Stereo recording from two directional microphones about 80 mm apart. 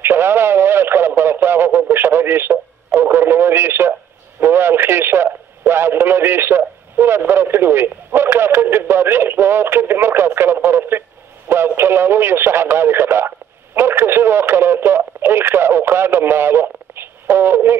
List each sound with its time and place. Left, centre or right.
0.0 s radio: right
4.4 s speech: right